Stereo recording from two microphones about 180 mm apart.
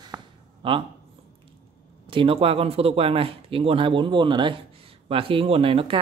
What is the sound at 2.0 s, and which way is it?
Speech, 30° right (ahead or behind).